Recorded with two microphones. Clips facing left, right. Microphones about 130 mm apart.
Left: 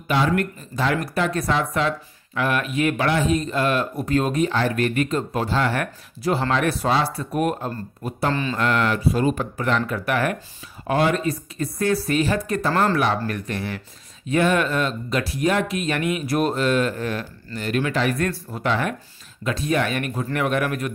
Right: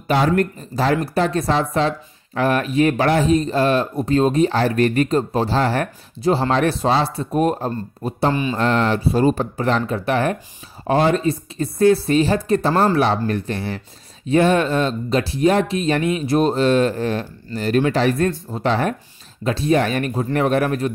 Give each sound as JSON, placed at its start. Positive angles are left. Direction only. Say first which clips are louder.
{"t": 0.1, "sound": "speech", "louder": "right 4 dB", "side_deg": -40}
{"t": 8.3, "sound": "speech", "louder": "right 3 dB", "side_deg": -15}
{"t": 8.5, "sound": "speech", "louder": "right 3 dB", "side_deg": -30}